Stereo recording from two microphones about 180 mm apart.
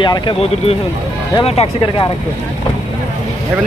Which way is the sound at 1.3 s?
30° left (ahead or behind).